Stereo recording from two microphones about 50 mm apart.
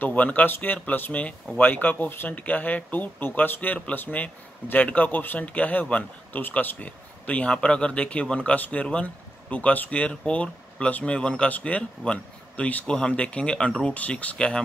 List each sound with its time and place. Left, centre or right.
0.0 s speech: left
8.5 s speech: left
12.9 s speech: centre